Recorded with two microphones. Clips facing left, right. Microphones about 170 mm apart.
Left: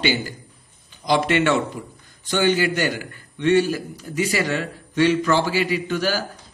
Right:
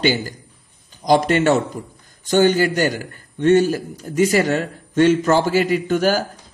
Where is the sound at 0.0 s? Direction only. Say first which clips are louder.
Right 3 dB; 45° right (ahead or behind).